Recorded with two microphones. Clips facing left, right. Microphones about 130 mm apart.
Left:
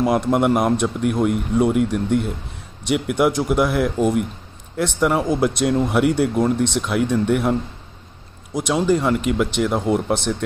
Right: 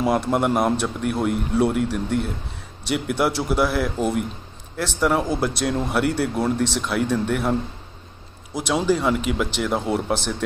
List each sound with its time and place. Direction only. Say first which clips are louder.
0.3 s speech: left 3 dB; 5° left (ahead or behind)
8.5 s speech: left 2 dB; 5° right (ahead or behind)